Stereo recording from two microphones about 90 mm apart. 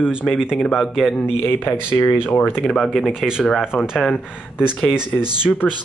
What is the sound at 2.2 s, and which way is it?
Speech, 25° left (ahead or behind).